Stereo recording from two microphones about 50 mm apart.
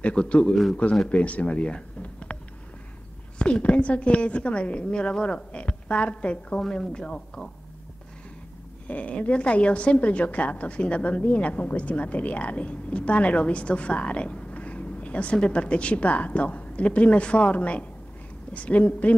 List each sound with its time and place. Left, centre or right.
0.0 s a woman's voice: left
2.3 s a sound: left
3.3 s a woman's voice: left
8.8 s a woman's voice: left